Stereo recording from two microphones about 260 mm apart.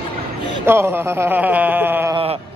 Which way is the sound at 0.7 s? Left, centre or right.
Centre.